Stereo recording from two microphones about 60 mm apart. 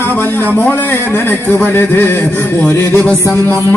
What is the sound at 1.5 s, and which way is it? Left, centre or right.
Speech, left.